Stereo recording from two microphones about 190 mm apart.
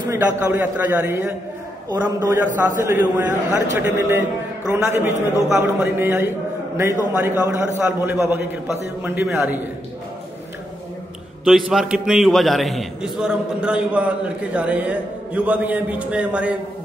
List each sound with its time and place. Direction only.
0.5 s a man's voice: 10° right (ahead or behind)
11.4 s a man's voice: 5° right (ahead or behind)